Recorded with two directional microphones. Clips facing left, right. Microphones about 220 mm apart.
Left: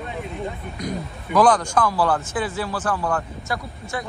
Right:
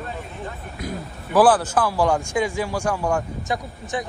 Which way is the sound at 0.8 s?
5° right (ahead or behind).